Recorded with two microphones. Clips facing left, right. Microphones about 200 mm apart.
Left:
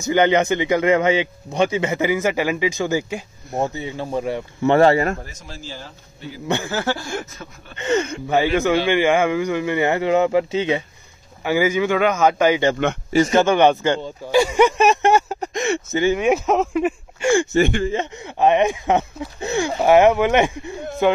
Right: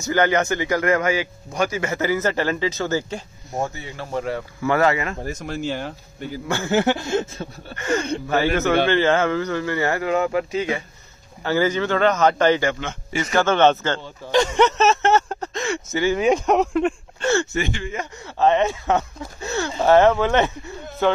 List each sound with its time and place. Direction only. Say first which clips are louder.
0.0 s speech: left 3 dB; 20° left (ahead or behind)
5.2 s speech: right 10 dB; 55° right (ahead or behind)
6.4 s speech: left 4 dB; 20° left (ahead or behind)
6.7 s a sound: right 5 dB; 20° right (ahead or behind)
7.7 s speech: left 2 dB; 20° left (ahead or behind)
11.4 s speech: left 2 dB; 10° left (ahead or behind)
16.2 s speech: even; 5° left (ahead or behind)
17.6 s speech: left 8 dB; 55° left (ahead or behind)
18.2 s speech: left 1 dB; 15° left (ahead or behind)